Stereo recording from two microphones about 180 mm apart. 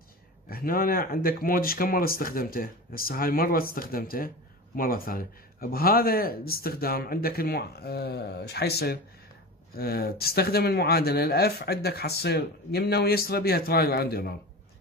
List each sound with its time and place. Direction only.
0.5 s speech: 55° left (ahead or behind)